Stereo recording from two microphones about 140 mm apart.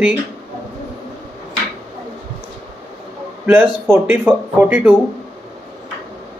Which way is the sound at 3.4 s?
15° right (ahead or behind).